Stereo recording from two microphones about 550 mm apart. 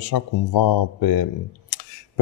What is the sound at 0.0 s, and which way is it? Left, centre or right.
Speech, left.